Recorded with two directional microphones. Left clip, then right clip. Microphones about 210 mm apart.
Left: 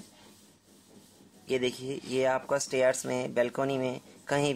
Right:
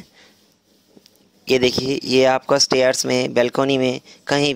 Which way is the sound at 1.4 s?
45° right (ahead or behind).